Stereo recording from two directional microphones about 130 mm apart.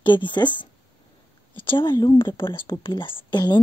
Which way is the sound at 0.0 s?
35° left (ahead or behind).